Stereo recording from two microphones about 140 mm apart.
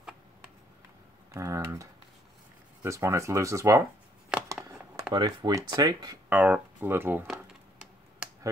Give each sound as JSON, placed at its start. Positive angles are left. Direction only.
{"t": 1.3, "sound": "speech", "side_deg": -20}
{"t": 4.5, "sound": "a sound", "side_deg": -20}
{"t": 5.1, "sound": "speech", "side_deg": -30}
{"t": 6.2, "sound": "speech", "side_deg": -10}
{"t": 8.2, "sound": "finger snapping", "side_deg": -5}